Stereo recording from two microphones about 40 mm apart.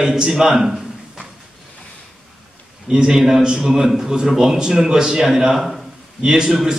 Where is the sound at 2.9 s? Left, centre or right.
Centre.